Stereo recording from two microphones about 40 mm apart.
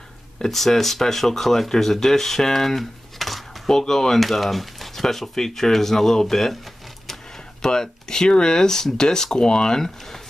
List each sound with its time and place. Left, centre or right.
0.4 s speech: centre
3.7 s speech: centre
7.6 s speech: centre